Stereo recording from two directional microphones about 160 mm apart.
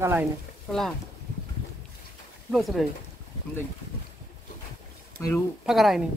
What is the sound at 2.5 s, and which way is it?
Speech, centre (ahead or behind).